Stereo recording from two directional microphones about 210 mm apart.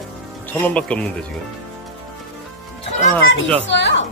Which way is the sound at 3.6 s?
55° left (ahead or behind).